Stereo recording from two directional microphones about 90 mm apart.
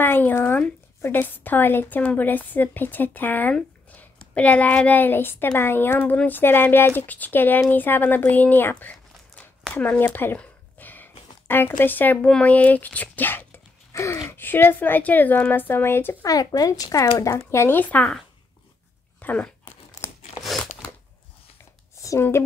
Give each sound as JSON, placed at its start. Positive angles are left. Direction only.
{"t": 0.0, "sound": "a woman's voice", "side_deg": 25}
{"t": 9.8, "sound": "a sound", "side_deg": 20}
{"t": 11.4, "sound": "a woman's voice", "side_deg": 25}
{"t": 13.9, "sound": "speech", "side_deg": 35}
{"t": 14.4, "sound": "a woman's voice", "side_deg": 25}
{"t": 16.3, "sound": "a woman's voice", "side_deg": 45}
{"t": 19.2, "sound": "speech", "side_deg": 15}
{"t": 20.0, "sound": "crumpling", "side_deg": 30}
{"t": 21.9, "sound": "a sound", "side_deg": 35}